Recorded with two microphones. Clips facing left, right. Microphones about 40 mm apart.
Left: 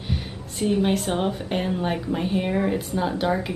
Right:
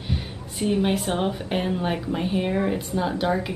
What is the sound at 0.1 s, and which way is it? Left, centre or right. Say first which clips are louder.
A woman's voice: even; centre.